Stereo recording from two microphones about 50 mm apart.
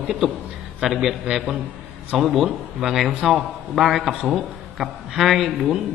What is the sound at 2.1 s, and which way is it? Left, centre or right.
A man's voice, centre.